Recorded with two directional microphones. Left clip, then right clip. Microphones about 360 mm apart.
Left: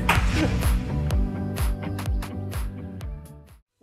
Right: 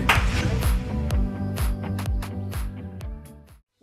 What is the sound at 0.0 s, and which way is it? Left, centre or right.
Music, centre.